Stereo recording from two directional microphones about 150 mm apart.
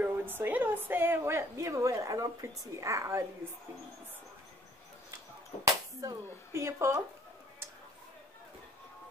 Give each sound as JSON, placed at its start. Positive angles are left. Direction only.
{"t": 0.0, "sound": "a woman's voice", "side_deg": -15}
{"t": 5.9, "sound": "a woman's voice", "side_deg": -20}